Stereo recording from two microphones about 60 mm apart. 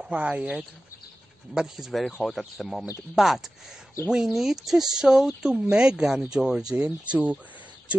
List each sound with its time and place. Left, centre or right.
0.0 s speech: centre
1.5 s speech: centre